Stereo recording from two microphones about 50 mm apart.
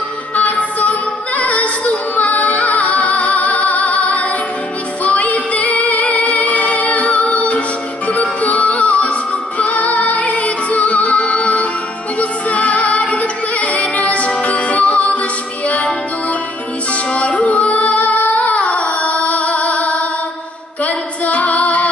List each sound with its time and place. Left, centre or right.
0.4 s music: left
20.8 s female singing: left